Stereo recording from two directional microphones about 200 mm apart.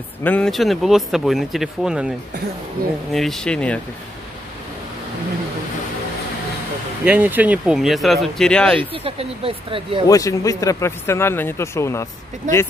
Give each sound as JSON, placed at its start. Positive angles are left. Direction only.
{"t": 0.2, "sound": "speech", "side_deg": 5}
{"t": 7.1, "sound": "speech", "side_deg": -10}
{"t": 8.9, "sound": "speech", "side_deg": -30}
{"t": 10.0, "sound": "speech", "side_deg": 15}